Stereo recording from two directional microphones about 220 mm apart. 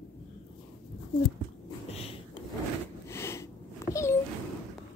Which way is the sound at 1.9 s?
25° left (ahead or behind).